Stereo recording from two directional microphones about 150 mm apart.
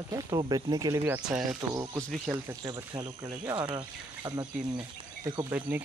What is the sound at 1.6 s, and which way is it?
Speech, 10° right (ahead or behind).